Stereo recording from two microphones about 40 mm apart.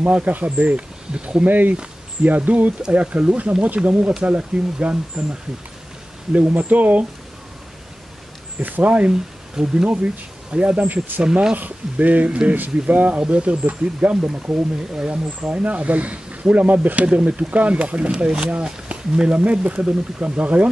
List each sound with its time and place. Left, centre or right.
0.0 s speech: right
1.4 s speech: right
6.3 s speech: right
8.5 s speech: right
9.8 s speech: right
10.9 s speech: right
12.3 s speech: right
12.9 s speech: right
13.2 s speech: right
18.1 s speech: centre
18.5 s speech: right